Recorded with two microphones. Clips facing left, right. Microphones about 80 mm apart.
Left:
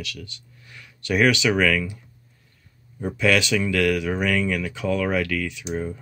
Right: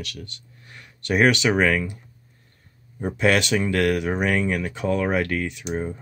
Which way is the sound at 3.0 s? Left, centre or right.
Right.